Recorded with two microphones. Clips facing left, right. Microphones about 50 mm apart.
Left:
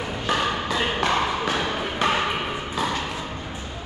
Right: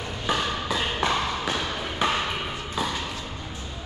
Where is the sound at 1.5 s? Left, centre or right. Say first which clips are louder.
Left 4 dB; left.